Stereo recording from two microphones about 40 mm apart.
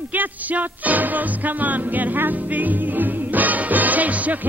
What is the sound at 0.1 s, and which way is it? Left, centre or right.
Music, right.